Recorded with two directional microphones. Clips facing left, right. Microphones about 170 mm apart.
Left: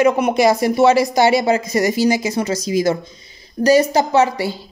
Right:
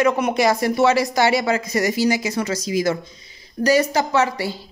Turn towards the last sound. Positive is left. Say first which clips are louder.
# left 4 dB
turn(degrees=20)  # may be behind; listen again after turning